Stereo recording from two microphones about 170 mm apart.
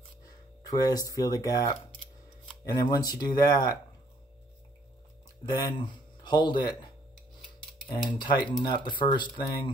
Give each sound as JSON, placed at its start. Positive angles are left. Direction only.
{"t": 0.7, "sound": "speech", "side_deg": 20}
{"t": 2.7, "sound": "speech", "side_deg": 20}
{"t": 5.4, "sound": "speech", "side_deg": 25}
{"t": 8.3, "sound": "speech", "side_deg": 25}